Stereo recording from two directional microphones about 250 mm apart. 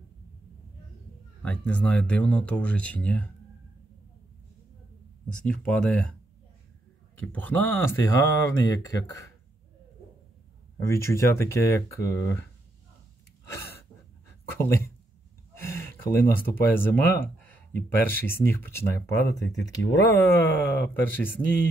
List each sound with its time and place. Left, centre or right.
1.4 s speech: centre
5.3 s speech: centre
7.2 s speech: centre
10.8 s speech: centre
15.5 s a sound: centre
16.4 s speech: centre
19.3 s speech: left
20.0 s speech: centre